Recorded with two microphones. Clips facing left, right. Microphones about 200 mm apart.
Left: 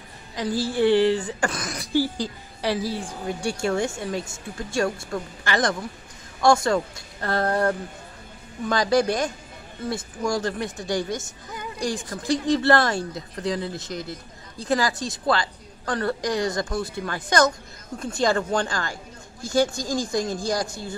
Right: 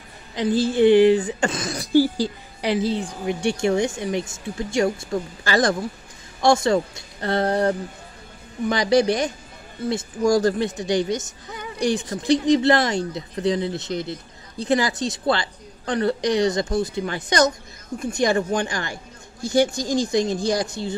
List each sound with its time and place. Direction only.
0.4 s speech: 20° right (ahead or behind)
1.8 s speech: 40° right (ahead or behind)
2.6 s speech: 20° right (ahead or behind)
5.4 s speech: 35° right (ahead or behind)
10.2 s speech: 35° right (ahead or behind)
10.8 s speech: 20° right (ahead or behind)